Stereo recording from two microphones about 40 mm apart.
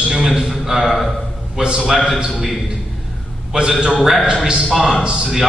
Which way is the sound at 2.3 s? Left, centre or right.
Centre.